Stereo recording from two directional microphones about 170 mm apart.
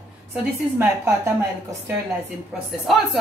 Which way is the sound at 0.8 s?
15° right (ahead or behind).